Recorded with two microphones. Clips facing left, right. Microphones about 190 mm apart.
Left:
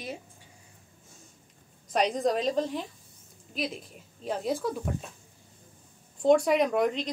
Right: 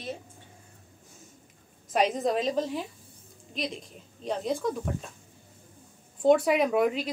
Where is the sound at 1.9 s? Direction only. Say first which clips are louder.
Even; centre (ahead or behind).